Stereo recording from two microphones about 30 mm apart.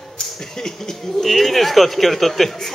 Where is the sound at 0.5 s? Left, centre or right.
Centre.